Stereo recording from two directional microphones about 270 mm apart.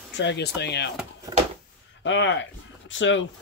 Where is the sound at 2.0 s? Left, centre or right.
Left.